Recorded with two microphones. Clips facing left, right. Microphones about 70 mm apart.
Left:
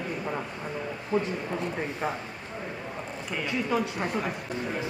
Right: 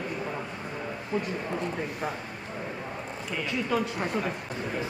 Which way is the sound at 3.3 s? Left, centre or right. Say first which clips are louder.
Left 1 dB; centre.